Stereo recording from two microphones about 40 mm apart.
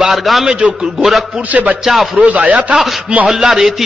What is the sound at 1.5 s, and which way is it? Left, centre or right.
Speech, right.